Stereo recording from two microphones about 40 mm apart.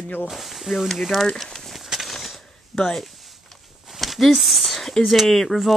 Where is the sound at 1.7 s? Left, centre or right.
Centre.